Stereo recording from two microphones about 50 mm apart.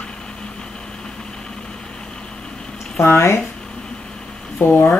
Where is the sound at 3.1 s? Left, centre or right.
Left.